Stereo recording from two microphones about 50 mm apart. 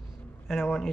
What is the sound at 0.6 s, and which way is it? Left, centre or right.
Speech, centre.